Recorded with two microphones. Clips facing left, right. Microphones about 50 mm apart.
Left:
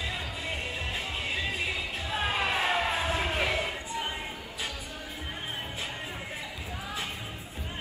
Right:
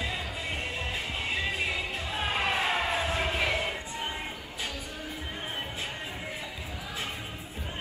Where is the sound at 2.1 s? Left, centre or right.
Left.